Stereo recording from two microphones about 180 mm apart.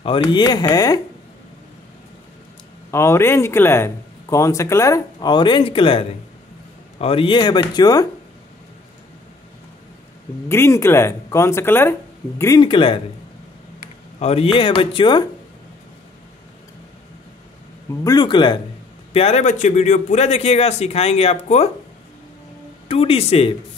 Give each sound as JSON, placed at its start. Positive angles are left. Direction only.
{"t": 0.0, "sound": "speech", "side_deg": 25}
{"t": 2.9, "sound": "speech", "side_deg": 15}
{"t": 10.5, "sound": "speech", "side_deg": 15}
{"t": 14.2, "sound": "speech", "side_deg": 35}
{"t": 17.8, "sound": "speech", "side_deg": 20}
{"t": 19.1, "sound": "speech", "side_deg": 35}
{"t": 22.8, "sound": "speech", "side_deg": 30}